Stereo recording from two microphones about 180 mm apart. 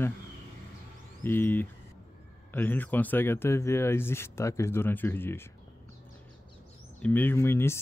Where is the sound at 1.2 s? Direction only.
10° left (ahead or behind).